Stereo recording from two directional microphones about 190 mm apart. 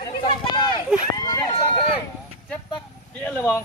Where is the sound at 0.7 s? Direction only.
20° left (ahead or behind).